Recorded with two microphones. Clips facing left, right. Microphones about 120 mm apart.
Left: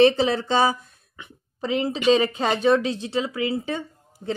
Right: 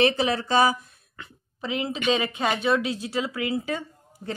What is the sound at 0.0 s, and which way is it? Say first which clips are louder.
Speech: left 5 dB; 25° left (ahead or behind).